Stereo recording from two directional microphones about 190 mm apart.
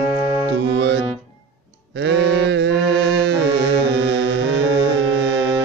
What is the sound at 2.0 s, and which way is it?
Mantra, 65° right (ahead or behind).